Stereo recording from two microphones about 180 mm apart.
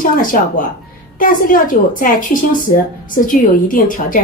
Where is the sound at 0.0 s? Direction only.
50° left (ahead or behind).